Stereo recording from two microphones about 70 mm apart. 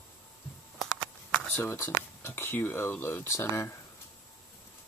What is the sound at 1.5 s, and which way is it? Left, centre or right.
Speech, left.